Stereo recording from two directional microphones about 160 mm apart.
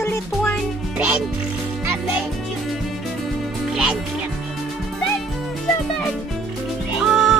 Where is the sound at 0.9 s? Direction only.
10° right (ahead or behind).